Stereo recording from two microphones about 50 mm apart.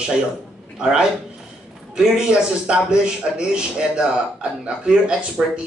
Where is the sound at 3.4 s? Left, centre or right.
Centre.